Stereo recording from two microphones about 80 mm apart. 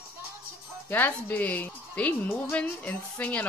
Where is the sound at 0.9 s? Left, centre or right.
Left.